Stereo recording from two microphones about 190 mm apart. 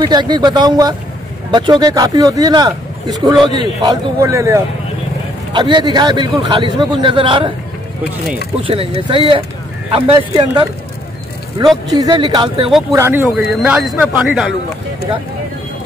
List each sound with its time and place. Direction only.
0.0 s speech: 20° right (ahead or behind)
8.6 s speech: 30° right (ahead or behind)
11.9 s speech: 20° right (ahead or behind)
12.9 s speech: 15° right (ahead or behind)